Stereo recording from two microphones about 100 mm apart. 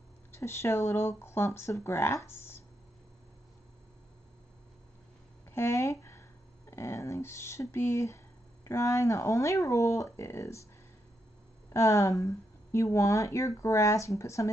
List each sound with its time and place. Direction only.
0.3 s speech: 25° left (ahead or behind)
5.5 s speech: 25° left (ahead or behind)
11.7 s speech: 30° left (ahead or behind)